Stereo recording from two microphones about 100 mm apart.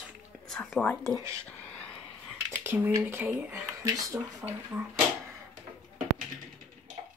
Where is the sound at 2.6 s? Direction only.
25° right (ahead or behind).